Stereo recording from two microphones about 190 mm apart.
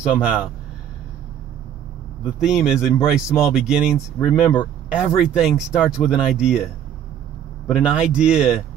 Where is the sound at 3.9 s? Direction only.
20° left (ahead or behind).